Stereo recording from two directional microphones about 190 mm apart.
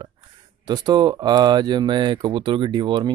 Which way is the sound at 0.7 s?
20° right (ahead or behind).